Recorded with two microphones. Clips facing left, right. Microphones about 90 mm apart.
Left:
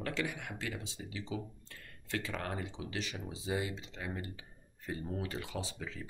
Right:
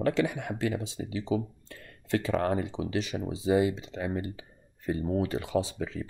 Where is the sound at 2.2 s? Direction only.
35° right (ahead or behind).